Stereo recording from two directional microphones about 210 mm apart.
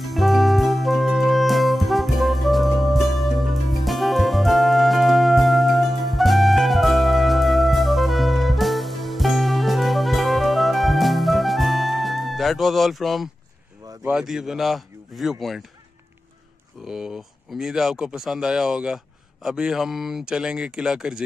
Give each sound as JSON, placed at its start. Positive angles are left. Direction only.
{"t": 0.0, "sound": "music", "side_deg": 0}
{"t": 13.8, "sound": "a man's voice", "side_deg": -5}
{"t": 16.8, "sound": "speech", "side_deg": -5}